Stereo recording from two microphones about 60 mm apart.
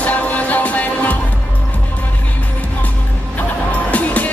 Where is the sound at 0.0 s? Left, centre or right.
Left.